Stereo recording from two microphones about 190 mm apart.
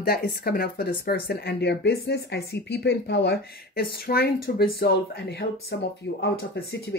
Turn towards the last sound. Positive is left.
turn(degrees=60)  # may be behind; listen again after turning